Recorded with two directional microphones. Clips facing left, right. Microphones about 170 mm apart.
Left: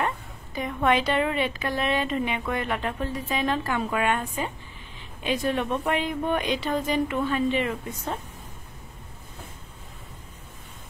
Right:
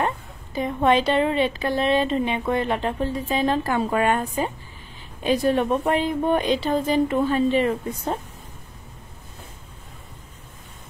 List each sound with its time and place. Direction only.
0.6 s a woman's voice: 30° right (ahead or behind)